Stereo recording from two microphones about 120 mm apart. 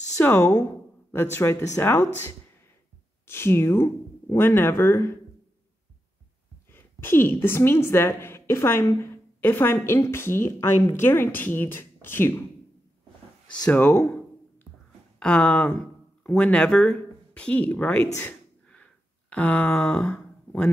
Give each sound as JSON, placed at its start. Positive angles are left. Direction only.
{"t": 0.2, "sound": "speech", "side_deg": 20}
{"t": 3.3, "sound": "speech", "side_deg": 20}
{"t": 6.7, "sound": "a woman's voice", "side_deg": 20}
{"t": 13.7, "sound": "a sound", "side_deg": 15}
{"t": 15.1, "sound": "speech", "side_deg": 5}
{"t": 18.2, "sound": "a sound", "side_deg": 10}